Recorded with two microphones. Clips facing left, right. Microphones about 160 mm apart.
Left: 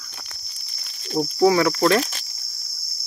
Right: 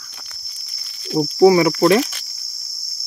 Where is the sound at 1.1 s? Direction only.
20° right (ahead or behind).